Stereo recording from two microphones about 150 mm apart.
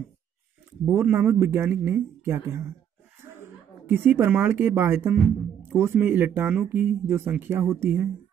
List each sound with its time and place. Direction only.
0.8 s a woman's voice: 15° right (ahead or behind)